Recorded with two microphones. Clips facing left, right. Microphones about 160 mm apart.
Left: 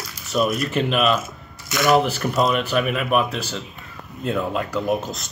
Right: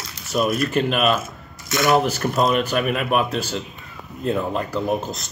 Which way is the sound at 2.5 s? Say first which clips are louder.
Right 1 dB; 40° right (ahead or behind).